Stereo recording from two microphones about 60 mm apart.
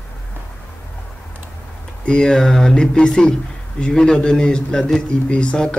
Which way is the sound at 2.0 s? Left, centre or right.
Centre.